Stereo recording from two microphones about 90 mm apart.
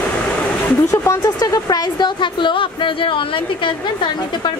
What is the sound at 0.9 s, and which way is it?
Music, 35° left (ahead or behind).